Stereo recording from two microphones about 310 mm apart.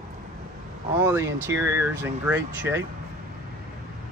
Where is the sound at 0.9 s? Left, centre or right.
Centre.